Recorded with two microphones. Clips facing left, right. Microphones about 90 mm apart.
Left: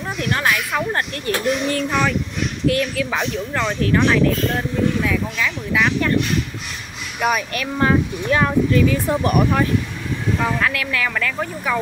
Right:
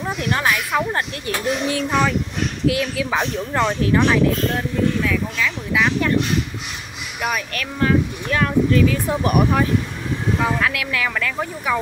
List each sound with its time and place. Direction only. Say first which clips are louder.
0.2 s a child's voice: left 1 dB; 10° right (ahead or behind)
5.0 s speech: even; 10° left (ahead or behind)
5.7 s speech: even; 5° right (ahead or behind)
7.2 s speech: left 4 dB; 5° left (ahead or behind)
7.8 s speech: left 1 dB; 25° left (ahead or behind)
8.7 s speech: left 1 dB; centre (ahead or behind)